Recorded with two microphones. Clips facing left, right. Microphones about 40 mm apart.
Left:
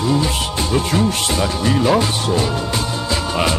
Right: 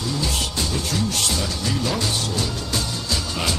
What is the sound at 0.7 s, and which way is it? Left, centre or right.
Speech, left.